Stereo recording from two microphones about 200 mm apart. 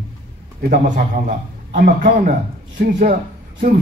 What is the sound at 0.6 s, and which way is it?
A man's voice, 40° right (ahead or behind).